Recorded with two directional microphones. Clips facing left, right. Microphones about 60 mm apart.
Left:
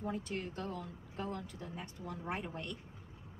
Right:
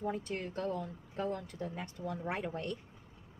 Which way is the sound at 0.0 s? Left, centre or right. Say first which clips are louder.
Right 2 dB; right.